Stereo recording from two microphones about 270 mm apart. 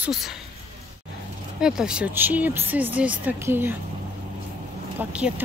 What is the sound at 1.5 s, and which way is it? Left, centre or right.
Speech, centre.